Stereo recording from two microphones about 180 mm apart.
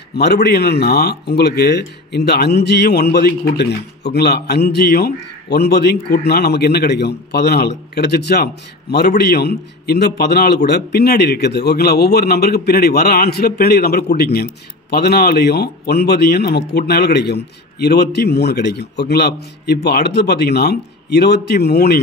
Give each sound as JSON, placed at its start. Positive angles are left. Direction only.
{"t": 0.1, "sound": "a man's voice", "side_deg": 65}